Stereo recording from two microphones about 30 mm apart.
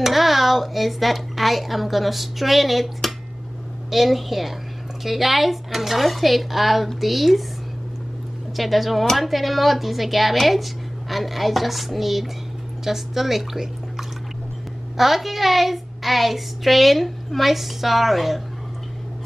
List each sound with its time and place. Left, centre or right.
0.0 s speech: centre
8.5 s speech: centre